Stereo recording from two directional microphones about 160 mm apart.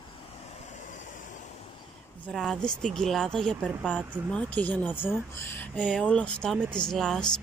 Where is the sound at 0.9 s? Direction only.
55° left (ahead or behind).